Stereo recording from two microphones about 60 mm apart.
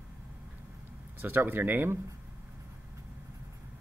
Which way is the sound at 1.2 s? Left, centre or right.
Right.